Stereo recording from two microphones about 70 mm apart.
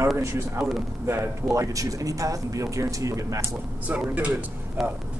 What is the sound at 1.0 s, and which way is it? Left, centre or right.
Speech, right.